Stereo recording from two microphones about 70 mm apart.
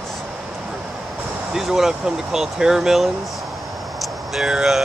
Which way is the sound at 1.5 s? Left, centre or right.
Centre.